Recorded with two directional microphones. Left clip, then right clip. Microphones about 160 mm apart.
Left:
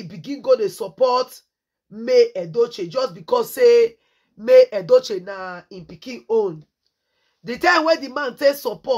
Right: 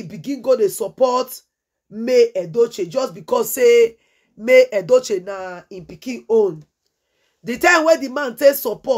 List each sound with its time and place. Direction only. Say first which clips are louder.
0.0 s speech: right 3 dB; 20° right (ahead or behind)